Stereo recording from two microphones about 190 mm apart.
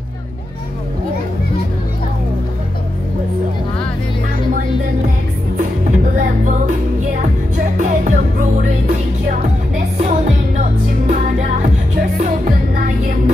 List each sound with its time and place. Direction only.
5.6 s music: 40° right (ahead or behind)